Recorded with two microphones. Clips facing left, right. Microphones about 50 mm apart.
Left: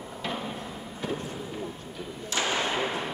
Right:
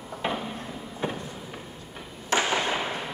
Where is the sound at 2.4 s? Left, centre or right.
Centre.